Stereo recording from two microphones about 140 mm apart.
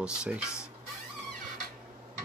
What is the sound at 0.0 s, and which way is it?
Speech, 5° right (ahead or behind).